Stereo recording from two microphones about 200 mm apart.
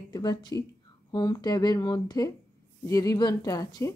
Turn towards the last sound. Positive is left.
turn(degrees=20)  # may be behind; listen again after turning